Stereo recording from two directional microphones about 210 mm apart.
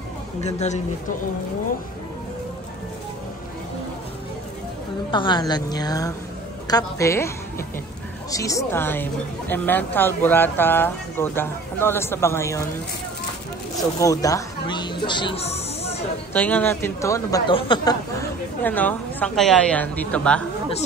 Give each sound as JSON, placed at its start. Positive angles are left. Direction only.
{"t": 5.1, "sound": "a woman's voice", "side_deg": 20}
{"t": 13.9, "sound": "music", "side_deg": 15}
{"t": 16.3, "sound": "a woman's voice", "side_deg": 10}